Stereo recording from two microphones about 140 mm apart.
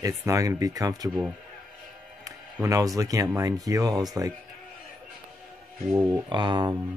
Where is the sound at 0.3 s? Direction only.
25° right (ahead or behind).